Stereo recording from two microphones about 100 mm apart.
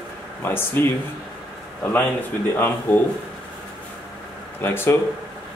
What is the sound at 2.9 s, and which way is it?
Speech, 15° left (ahead or behind).